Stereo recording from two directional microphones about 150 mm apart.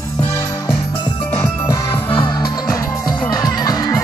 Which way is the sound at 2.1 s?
30° left (ahead or behind).